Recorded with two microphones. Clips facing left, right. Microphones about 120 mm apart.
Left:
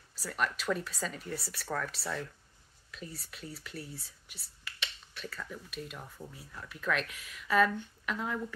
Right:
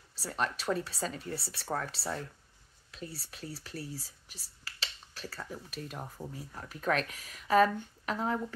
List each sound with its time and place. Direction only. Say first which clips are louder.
0.1 s speech: even; 30° right (ahead or behind)